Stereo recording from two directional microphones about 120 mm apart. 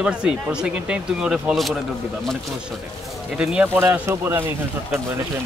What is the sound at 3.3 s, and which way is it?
Speech, 10° right (ahead or behind).